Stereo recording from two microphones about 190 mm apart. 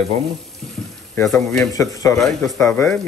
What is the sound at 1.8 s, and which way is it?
Speech, 15° left (ahead or behind).